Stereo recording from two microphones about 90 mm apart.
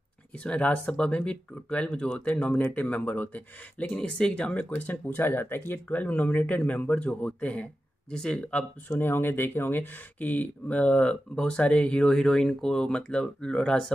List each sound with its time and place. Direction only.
0.4 s speech: 15° left (ahead or behind)
8.9 s speech: 25° left (ahead or behind); by 13.9 s 10° left (ahead or behind)